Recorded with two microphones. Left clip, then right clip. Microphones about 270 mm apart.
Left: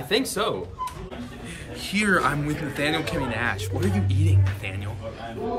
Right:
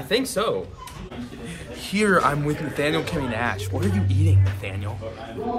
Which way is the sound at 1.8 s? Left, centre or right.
Centre.